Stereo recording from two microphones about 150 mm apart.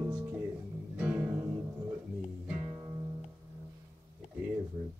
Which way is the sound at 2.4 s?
15° right (ahead or behind).